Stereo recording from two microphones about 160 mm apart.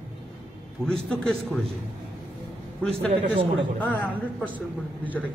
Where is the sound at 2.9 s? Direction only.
35° right (ahead or behind).